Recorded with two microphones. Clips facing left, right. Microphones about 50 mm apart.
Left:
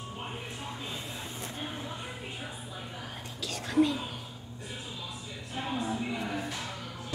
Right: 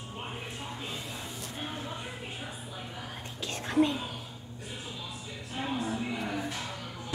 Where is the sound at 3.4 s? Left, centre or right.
Right.